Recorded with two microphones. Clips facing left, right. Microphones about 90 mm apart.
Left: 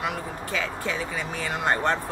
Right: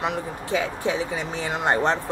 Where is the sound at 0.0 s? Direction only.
20° right (ahead or behind).